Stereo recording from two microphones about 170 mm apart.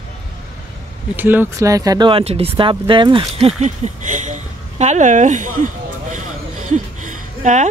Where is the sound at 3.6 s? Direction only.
45° right (ahead or behind).